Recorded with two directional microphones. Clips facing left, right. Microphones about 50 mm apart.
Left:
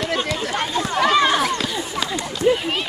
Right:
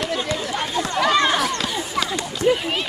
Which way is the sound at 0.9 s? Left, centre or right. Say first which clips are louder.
Left 2 dB; centre.